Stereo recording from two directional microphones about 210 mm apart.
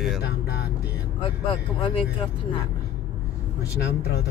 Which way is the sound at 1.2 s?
25° left (ahead or behind).